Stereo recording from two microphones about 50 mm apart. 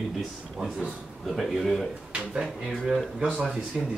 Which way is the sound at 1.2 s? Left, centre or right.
Centre.